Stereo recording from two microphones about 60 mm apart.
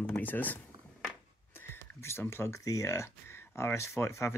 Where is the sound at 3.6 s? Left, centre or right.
Left.